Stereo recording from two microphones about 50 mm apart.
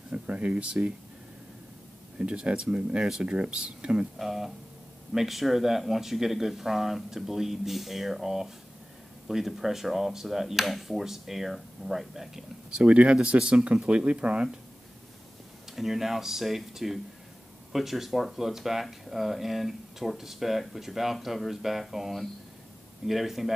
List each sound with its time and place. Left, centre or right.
0.1 s speech: right
2.1 s speech: right
4.2 s speech: centre
12.7 s speech: right
15.7 s speech: centre